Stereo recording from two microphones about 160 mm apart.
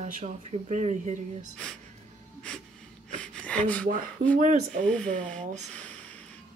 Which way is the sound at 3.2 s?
5° left (ahead or behind).